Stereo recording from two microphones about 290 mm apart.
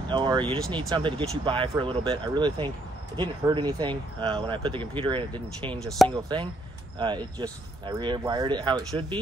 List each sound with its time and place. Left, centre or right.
0.1 s speech: centre
5.9 s speech: centre
6.1 s speech: centre